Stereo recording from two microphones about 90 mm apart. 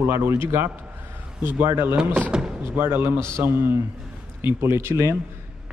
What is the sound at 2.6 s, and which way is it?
Speech, 25° right (ahead or behind).